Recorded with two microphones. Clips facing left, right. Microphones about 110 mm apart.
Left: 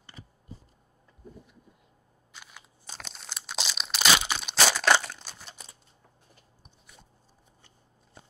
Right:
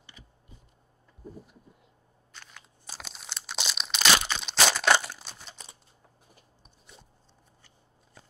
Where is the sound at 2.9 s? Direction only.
5° right (ahead or behind).